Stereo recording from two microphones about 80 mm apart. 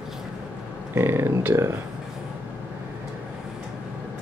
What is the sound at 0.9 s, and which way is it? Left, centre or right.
Speech, right.